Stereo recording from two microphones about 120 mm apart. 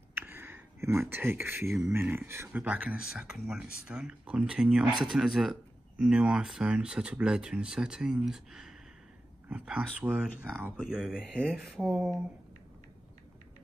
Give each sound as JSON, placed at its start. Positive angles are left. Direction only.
{"t": 0.1, "sound": "a sound", "side_deg": -15}
{"t": 1.9, "sound": "speech", "side_deg": -20}
{"t": 11.1, "sound": "speech", "side_deg": 5}